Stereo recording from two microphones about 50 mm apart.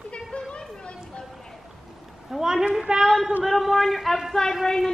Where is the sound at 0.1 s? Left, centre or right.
Left.